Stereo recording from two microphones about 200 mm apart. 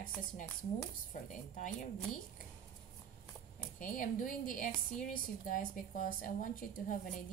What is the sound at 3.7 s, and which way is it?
A woman's voice, 40° left (ahead or behind).